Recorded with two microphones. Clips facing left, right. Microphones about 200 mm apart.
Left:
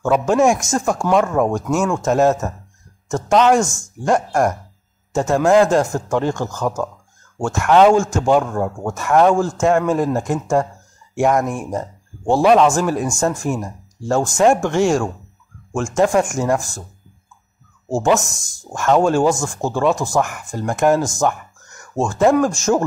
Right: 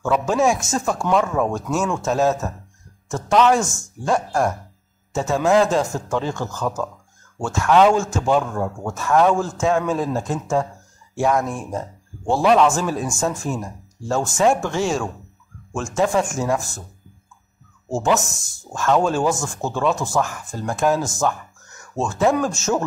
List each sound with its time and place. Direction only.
0.0 s speech: 15° left (ahead or behind)
17.8 s speech: 15° left (ahead or behind)